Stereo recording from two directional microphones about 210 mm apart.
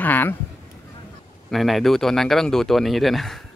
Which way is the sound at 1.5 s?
Centre (ahead or behind).